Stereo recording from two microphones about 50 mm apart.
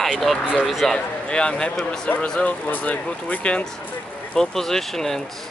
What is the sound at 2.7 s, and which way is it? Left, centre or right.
Speech, left.